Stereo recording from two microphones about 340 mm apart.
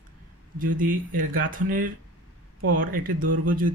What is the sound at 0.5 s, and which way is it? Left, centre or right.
Speech, right.